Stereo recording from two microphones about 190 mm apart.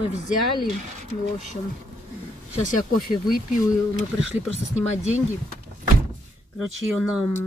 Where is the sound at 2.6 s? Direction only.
50° left (ahead or behind).